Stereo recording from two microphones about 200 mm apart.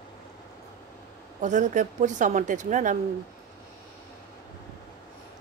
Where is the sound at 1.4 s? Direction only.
40° right (ahead or behind).